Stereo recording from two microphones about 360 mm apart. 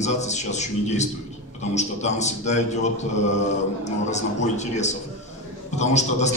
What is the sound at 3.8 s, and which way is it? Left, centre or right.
A man's voice, centre.